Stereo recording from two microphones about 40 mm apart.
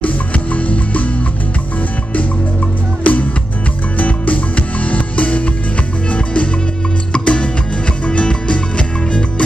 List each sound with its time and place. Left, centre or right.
0.0 s music: left
3.0 s music: left